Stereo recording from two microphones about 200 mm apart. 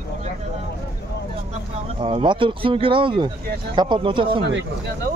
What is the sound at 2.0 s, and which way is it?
Speech, 25° right (ahead or behind).